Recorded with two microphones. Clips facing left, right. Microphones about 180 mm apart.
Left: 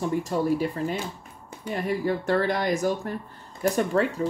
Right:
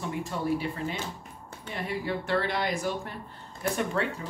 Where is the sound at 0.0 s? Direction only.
40° left (ahead or behind).